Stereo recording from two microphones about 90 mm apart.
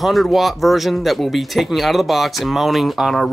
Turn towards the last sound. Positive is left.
turn(degrees=0)  # may be behind; listen again after turning